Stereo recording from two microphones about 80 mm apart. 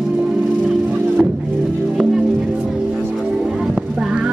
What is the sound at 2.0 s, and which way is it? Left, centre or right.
Music, centre.